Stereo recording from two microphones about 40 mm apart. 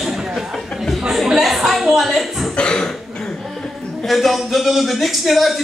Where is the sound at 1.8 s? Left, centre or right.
Centre.